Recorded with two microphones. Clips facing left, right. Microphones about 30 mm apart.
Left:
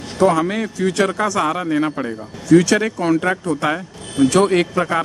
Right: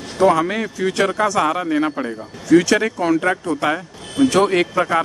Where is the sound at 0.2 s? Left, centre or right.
Centre.